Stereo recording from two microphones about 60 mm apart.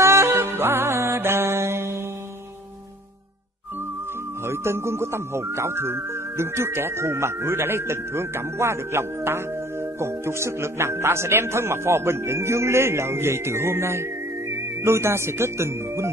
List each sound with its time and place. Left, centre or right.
0.0 s music: right
4.5 s speech: right